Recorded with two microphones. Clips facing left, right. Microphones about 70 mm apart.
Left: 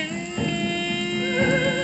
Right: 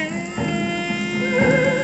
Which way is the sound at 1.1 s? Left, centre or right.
Right.